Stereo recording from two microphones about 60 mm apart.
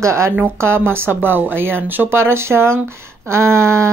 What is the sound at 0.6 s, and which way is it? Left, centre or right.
A woman's voice, right.